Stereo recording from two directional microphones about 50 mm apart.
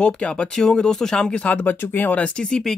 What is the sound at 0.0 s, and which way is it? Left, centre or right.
Speech, left.